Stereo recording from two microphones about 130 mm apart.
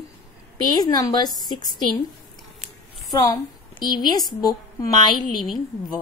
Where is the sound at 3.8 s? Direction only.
35° left (ahead or behind).